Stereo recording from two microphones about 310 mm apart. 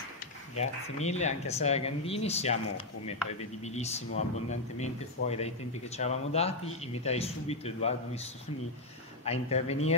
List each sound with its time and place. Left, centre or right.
0.6 s speech: left
3.6 s speech: left
9.2 s speech: centre